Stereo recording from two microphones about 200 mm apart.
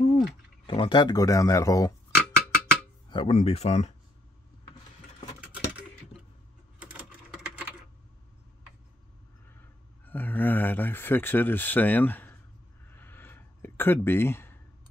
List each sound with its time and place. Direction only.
0.7 s speech: 25° left (ahead or behind)
2.1 s a sound: 5° left (ahead or behind)
3.1 s speech: 30° left (ahead or behind)
6.8 s typing: 5° right (ahead or behind)
10.0 s speech: 10° left (ahead or behind)
12.9 s a sound: 10° left (ahead or behind)